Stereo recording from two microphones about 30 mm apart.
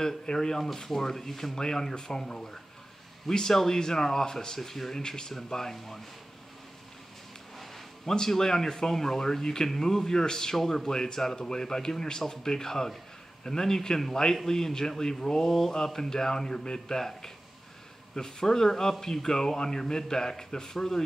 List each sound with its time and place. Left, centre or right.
0.0 s a man's voice: left
0.6 s a man's voice: centre
4.6 s speech: centre
4.9 s a man's voice: left
7.5 s a sound: centre
8.1 s a man's voice: centre
18.1 s speech: centre